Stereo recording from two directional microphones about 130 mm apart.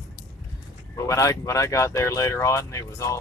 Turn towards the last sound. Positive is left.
turn(degrees=25)  # may be behind; listen again after turning